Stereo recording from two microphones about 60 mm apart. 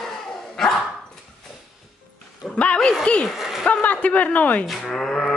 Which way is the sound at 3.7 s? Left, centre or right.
Left.